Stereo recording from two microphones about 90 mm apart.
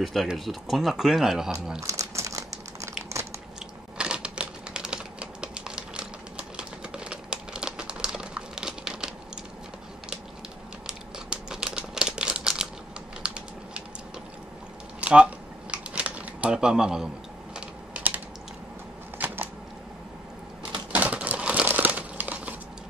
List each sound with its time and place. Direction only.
0.0 s speech: centre (ahead or behind)
1.9 s crumpling: 35° right (ahead or behind)
3.1 s biting: 30° right (ahead or behind)
4.0 s typewriter: 10° right (ahead or behind)
10.9 s crumpling: 10° right (ahead or behind)
13.2 s a sound: 10° right (ahead or behind)
15.0 s a sound: 15° right (ahead or behind)
17.6 s typing: 15° right (ahead or behind)
19.1 s a sound: 20° right (ahead or behind)
20.9 s crumpling: 15° right (ahead or behind)